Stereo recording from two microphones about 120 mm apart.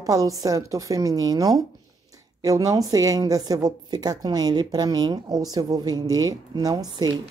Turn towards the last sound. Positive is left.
turn(degrees=-35)  # may be behind; listen again after turning